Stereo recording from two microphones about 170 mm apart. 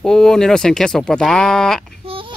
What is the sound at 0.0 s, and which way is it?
Speech, 5° left (ahead or behind).